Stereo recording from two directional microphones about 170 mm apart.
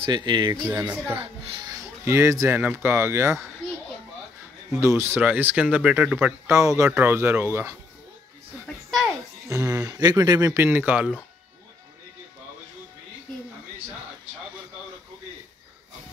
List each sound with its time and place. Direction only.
0.0 s speech: 25° right (ahead or behind); by 1.2 s 10° right (ahead or behind)
1.2 s speech: 30° right (ahead or behind); by 3.4 s 15° right (ahead or behind)
4.7 s speech: 15° right (ahead or behind)
8.6 s music: centre (ahead or behind)
9.5 s speech: 20° right (ahead or behind)